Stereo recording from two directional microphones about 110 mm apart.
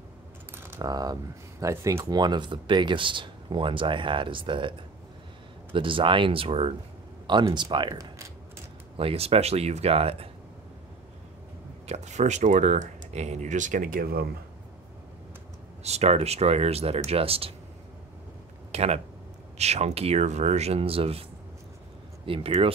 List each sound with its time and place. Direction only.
0.7 s speech: 30° right (ahead or behind); by 6.7 s 55° right (ahead or behind)
7.2 s speech: 45° right (ahead or behind)
8.9 s speech: 60° right (ahead or behind)
11.9 s speech: 90° right
15.8 s speech: 75° right (ahead or behind); by 17.5 s 60° right (ahead or behind)
18.7 s a sound: 70° right (ahead or behind)
19.6 s speech: 75° right (ahead or behind); by 22.7 s 60° right (ahead or behind)